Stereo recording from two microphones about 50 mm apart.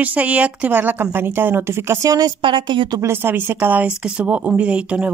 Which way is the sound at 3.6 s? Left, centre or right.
Right.